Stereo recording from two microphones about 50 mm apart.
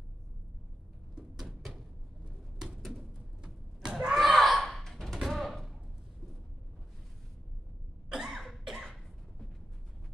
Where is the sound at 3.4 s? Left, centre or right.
Centre.